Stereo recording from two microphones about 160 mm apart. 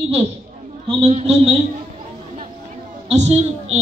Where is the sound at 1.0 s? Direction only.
40° right (ahead or behind).